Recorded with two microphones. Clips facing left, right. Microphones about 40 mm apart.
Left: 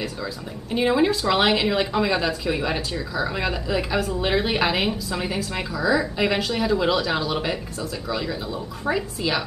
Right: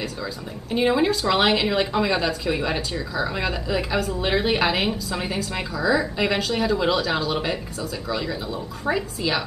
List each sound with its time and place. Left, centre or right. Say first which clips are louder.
0.7 s speech: even; centre